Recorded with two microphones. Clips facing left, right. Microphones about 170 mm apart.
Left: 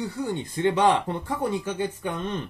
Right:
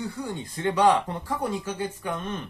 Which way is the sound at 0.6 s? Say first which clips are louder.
Even; 20° left (ahead or behind).